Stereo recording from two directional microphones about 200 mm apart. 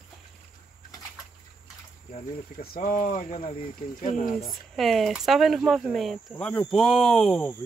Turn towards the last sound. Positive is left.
turn(degrees=5)  # may be behind; listen again after turning